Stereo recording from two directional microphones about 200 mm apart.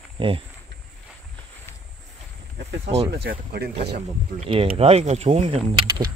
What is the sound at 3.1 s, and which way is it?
Speech, 55° right (ahead or behind).